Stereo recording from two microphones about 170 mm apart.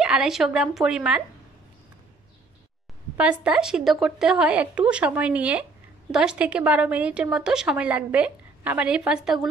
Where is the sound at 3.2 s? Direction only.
5° right (ahead or behind).